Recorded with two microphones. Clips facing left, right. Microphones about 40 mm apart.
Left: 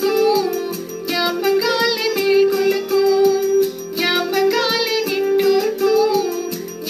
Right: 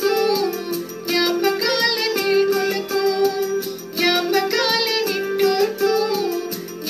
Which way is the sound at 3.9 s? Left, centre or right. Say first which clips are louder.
Even; centre.